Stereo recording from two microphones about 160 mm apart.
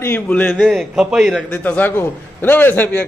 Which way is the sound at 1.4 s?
10° left (ahead or behind).